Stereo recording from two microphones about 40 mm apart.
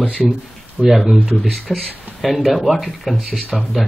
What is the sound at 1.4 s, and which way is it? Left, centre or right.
Speech, centre.